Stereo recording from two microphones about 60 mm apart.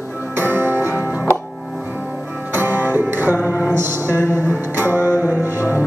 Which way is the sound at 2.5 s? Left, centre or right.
Right.